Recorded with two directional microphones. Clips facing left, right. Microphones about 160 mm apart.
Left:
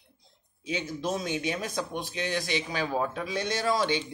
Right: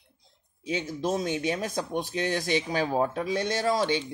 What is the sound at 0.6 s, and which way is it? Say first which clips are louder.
Speech: right 2 dB; 40° right (ahead or behind).